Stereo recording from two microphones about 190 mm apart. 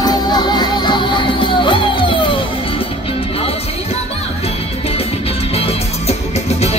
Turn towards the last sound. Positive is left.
turn(degrees=35)  # may be behind; listen again after turning